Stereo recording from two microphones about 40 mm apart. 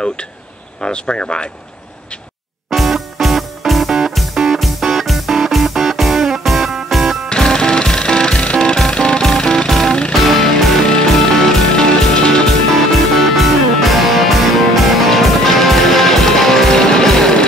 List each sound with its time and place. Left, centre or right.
0.8 s speech: left
2.7 s music: centre
7.5 s music: centre
9.7 s music: centre
10.8 s music: centre
11.1 s music: centre
12.4 s music: centre